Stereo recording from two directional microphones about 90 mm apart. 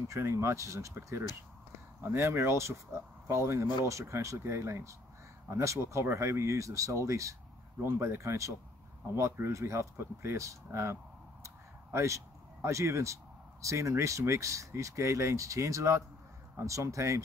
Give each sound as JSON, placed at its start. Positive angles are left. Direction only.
{"t": 0.1, "sound": "speech", "side_deg": -30}
{"t": 11.4, "sound": "a sound", "side_deg": -35}
{"t": 12.6, "sound": "speech", "side_deg": -30}